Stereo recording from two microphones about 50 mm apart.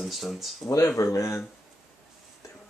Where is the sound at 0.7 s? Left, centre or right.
Left.